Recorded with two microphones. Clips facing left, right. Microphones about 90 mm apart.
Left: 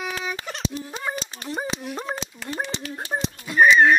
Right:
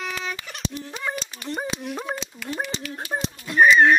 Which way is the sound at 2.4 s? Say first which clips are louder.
Even; 35° left (ahead or behind).